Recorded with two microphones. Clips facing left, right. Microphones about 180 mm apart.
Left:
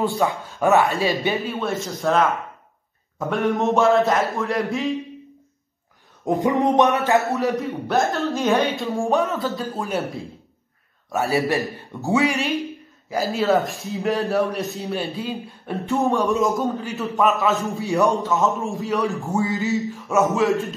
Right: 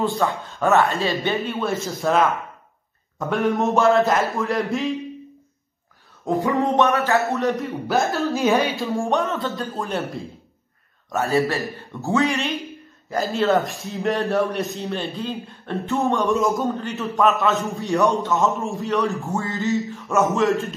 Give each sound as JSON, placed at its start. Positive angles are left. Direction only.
{"t": 0.0, "sound": "a man's voice", "side_deg": 15}
{"t": 1.5, "sound": "a woman's voice", "side_deg": 0}
{"t": 6.2, "sound": "a man's voice", "side_deg": 20}
{"t": 7.2, "sound": "a woman's voice", "side_deg": 0}
{"t": 11.2, "sound": "a man's voice", "side_deg": 15}
{"t": 13.1, "sound": "a woman's voice", "side_deg": 0}
{"t": 16.1, "sound": "a woman's voice", "side_deg": 0}
{"t": 19.3, "sound": "a man's voice", "side_deg": 15}
{"t": 19.6, "sound": "a woman's voice", "side_deg": 0}